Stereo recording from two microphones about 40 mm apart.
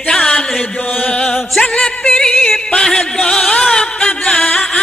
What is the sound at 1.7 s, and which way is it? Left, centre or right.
Music, left.